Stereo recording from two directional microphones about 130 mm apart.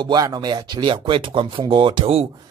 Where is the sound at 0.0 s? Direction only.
30° right (ahead or behind).